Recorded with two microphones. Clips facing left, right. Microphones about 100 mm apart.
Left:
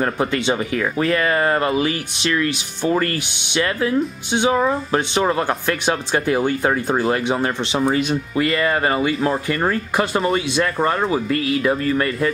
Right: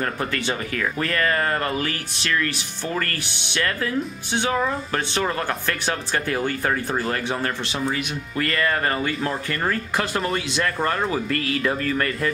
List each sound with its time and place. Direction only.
0.0 s speech: 20° left (ahead or behind)
8.7 s speech: 15° left (ahead or behind)